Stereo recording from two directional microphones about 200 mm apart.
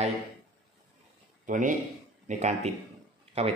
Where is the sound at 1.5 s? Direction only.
40° right (ahead or behind).